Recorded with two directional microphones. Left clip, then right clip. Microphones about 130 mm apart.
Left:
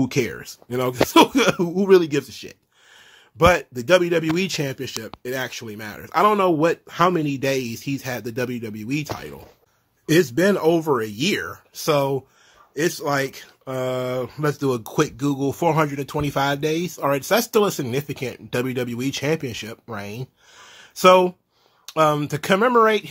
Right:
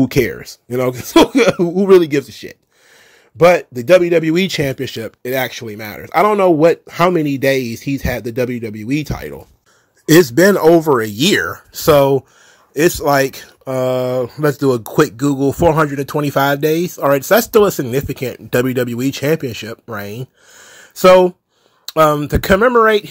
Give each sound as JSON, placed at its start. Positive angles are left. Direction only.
{"t": 0.0, "sound": "speech", "side_deg": -40}
{"t": 4.4, "sound": "speech", "side_deg": -50}
{"t": 10.0, "sound": "speech", "side_deg": -50}
{"t": 11.1, "sound": "speech", "side_deg": -65}
{"t": 12.7, "sound": "speech", "side_deg": -65}
{"t": 13.7, "sound": "speech", "side_deg": -40}
{"t": 21.8, "sound": "a sound", "side_deg": -40}
{"t": 22.3, "sound": "speech", "side_deg": -35}
{"t": 22.6, "sound": "speech", "side_deg": -20}